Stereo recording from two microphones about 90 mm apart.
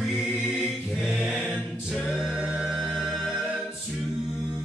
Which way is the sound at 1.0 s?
5° right (ahead or behind).